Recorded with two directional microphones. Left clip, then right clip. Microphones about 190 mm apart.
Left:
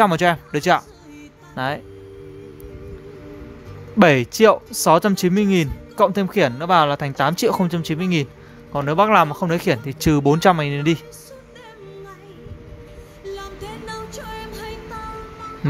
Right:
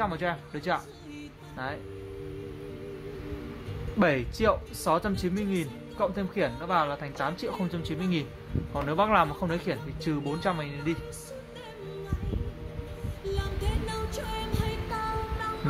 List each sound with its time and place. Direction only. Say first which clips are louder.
0.0 s speech: left 14 dB; 60° left (ahead or behind)
4.0 s speech: left 12 dB; 55° left (ahead or behind)
13.2 s music: left 3 dB; 10° right (ahead or behind)